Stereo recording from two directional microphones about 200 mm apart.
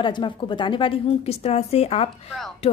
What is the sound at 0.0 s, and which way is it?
A woman's voice, 25° left (ahead or behind).